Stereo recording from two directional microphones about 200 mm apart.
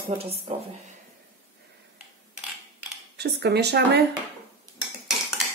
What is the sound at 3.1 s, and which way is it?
Speech, 55° right (ahead or behind).